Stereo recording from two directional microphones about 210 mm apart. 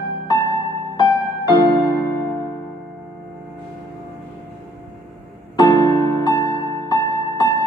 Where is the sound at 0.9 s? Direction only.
20° left (ahead or behind).